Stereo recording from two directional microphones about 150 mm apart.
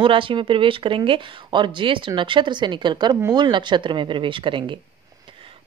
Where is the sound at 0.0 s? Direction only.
35° right (ahead or behind).